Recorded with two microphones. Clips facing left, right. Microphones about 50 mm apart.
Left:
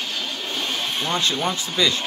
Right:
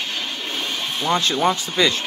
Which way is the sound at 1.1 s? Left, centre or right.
Right.